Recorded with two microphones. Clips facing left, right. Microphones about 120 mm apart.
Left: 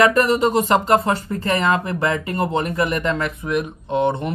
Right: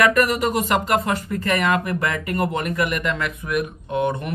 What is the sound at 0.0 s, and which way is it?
Speech, 25° left (ahead or behind).